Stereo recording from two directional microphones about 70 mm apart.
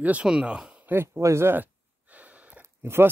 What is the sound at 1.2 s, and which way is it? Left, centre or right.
Speech, right.